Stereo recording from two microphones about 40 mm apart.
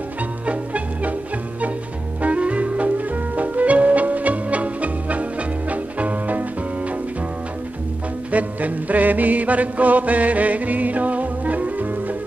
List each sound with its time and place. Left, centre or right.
0.5 s music: right
2.2 s music: right
8.3 s music: right